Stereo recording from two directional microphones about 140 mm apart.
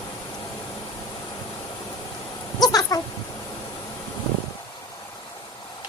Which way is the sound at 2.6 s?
25° left (ahead or behind).